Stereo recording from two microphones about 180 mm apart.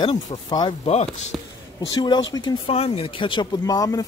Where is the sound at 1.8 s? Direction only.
25° left (ahead or behind).